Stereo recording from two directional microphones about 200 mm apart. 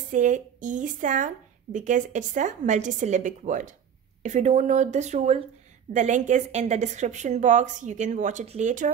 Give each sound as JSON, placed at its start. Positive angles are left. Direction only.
{"t": 0.1, "sound": "speech", "side_deg": -40}